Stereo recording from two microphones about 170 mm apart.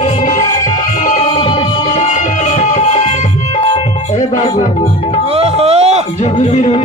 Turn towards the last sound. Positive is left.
turn(degrees=45)  # may be behind; listen again after turning